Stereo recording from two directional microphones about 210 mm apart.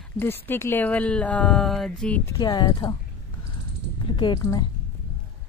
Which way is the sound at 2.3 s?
20° left (ahead or behind).